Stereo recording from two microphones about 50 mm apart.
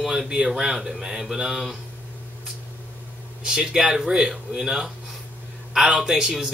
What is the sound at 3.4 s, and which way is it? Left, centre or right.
Speech, centre.